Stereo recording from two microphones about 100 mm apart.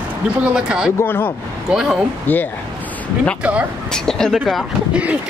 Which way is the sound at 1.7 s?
5° right (ahead or behind).